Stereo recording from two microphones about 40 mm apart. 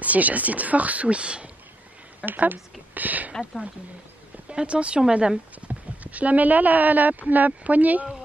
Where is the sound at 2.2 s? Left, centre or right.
Right.